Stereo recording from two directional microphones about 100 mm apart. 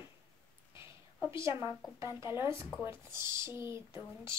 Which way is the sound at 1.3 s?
30° right (ahead or behind).